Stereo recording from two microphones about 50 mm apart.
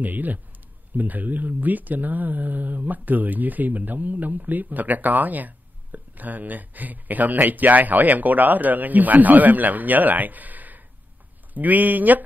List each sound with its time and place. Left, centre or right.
0.0 s speech: right